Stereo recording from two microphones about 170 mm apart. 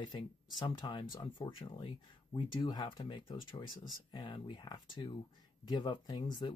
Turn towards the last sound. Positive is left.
turn(degrees=25)  # may be behind; listen again after turning